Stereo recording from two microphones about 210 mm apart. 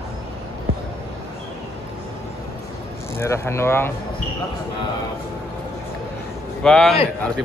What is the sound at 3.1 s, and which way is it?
Speech, 10° left (ahead or behind).